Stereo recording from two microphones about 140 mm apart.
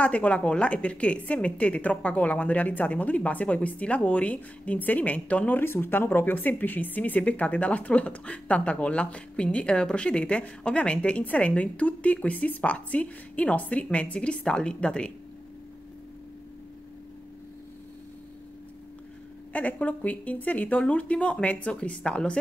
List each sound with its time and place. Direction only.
0.0 s a woman's voice: 10° left (ahead or behind)
19.5 s a woman's voice: 10° left (ahead or behind)